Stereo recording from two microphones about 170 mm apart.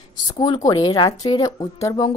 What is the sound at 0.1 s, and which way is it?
A woman's voice, 25° left (ahead or behind).